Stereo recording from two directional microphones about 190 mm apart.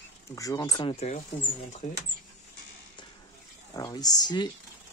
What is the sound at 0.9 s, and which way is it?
Speech, 35° left (ahead or behind).